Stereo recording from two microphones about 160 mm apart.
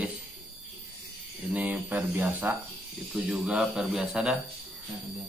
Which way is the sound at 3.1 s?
Centre (ahead or behind).